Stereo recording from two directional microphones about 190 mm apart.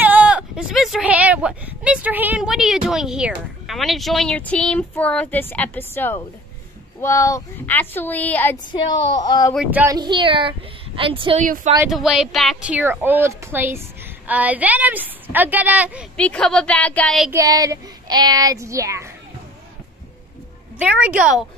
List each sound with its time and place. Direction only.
0.0 s speech: 10° right (ahead or behind); by 8.5 s 10° left (ahead or behind)
8.7 s a woman's voice: 20° left (ahead or behind)
9.7 s speech: 10° right (ahead or behind)
9.9 s speech: 25° right (ahead or behind)
11.4 s speech: 45° right (ahead or behind)
11.9 s speech: centre (ahead or behind)
16.2 s a woman's voice: 5° left (ahead or behind)
17.3 s speech: 20° right (ahead or behind)
20.7 s speech: 5° right (ahead or behind)